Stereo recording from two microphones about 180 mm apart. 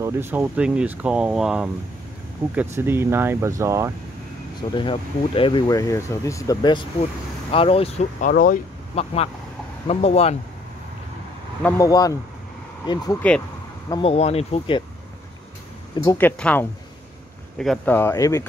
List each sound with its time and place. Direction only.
0.0 s speech: 15° right (ahead or behind)
4.6 s speech: 25° left (ahead or behind)
8.3 s speech: 50° left (ahead or behind)
8.9 s speech: 35° left (ahead or behind)
11.6 s speech: 20° left (ahead or behind)
14.1 s speech: 35° left (ahead or behind)
16.0 s speech: 15° left (ahead or behind)